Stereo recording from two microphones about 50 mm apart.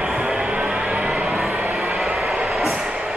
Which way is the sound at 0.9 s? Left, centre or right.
Centre.